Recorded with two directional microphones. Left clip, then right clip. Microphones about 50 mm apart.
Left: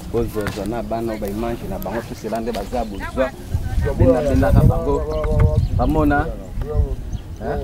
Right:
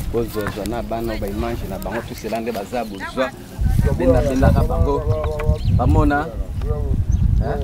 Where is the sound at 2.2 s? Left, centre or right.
Right.